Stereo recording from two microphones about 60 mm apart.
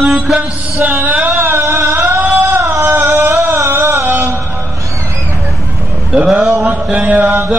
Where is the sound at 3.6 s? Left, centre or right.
Right.